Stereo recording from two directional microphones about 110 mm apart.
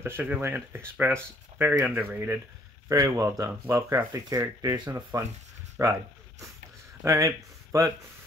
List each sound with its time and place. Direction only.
0.0 s speech: 20° right (ahead or behind)
2.9 s speech: 30° right (ahead or behind)
3.6 s speech: 20° right (ahead or behind)
4.1 s speech: 30° right (ahead or behind)
7.1 s speech: 30° right (ahead or behind)